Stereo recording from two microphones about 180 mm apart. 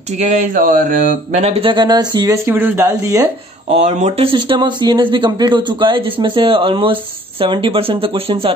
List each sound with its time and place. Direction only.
0.2 s speech: 40° right (ahead or behind); by 3.3 s 15° right (ahead or behind)
3.8 s speech: 40° right (ahead or behind)
4.3 s speech: 25° right (ahead or behind)